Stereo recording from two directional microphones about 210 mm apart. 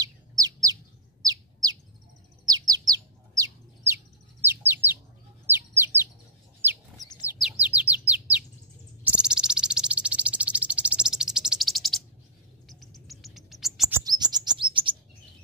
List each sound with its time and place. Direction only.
0.0 s bird: 15° right (ahead or behind)
4.5 s bird: 10° right (ahead or behind)
7.3 s bird: 5° right (ahead or behind)
9.0 s cricket: 5° right (ahead or behind)
12.6 s bird: centre (ahead or behind)
13.5 s chirp: centre (ahead or behind)
13.9 s chirp: 20° right (ahead or behind)